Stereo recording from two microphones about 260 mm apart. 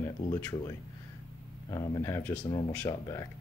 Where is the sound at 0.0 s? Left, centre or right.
Centre.